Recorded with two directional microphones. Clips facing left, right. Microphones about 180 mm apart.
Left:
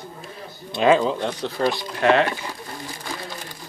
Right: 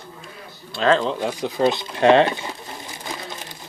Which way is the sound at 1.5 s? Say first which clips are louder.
Right 5 dB; 20° right (ahead or behind).